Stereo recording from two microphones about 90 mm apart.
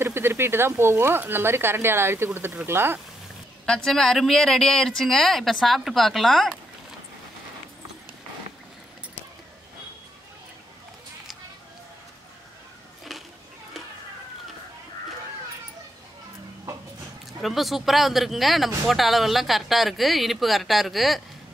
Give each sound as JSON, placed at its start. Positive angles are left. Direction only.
{"t": 0.0, "sound": "speech", "side_deg": -25}
{"t": 3.6, "sound": "speech", "side_deg": 10}
{"t": 13.1, "sound": "music", "side_deg": 0}
{"t": 17.3, "sound": "speech", "side_deg": 0}